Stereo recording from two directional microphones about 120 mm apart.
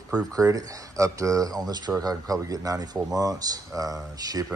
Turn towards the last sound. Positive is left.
turn(degrees=-30)  # may be behind; listen again after turning